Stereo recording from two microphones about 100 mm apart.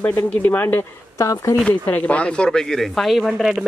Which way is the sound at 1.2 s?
35° left (ahead or behind).